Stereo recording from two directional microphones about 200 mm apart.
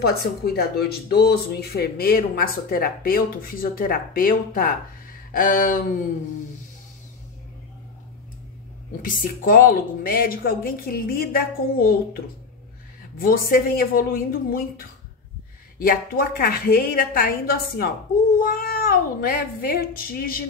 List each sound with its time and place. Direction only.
0.0 s speech: 50° left (ahead or behind)
9.0 s speech: 45° left (ahead or behind)
13.2 s speech: 45° left (ahead or behind)
15.8 s speech: 50° left (ahead or behind)